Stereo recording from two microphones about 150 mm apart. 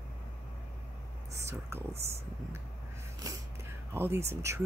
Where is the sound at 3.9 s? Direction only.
15° right (ahead or behind).